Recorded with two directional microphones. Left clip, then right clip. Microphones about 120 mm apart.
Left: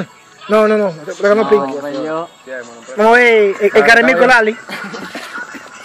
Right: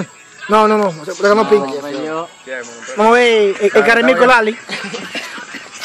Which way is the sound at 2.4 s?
30° right (ahead or behind).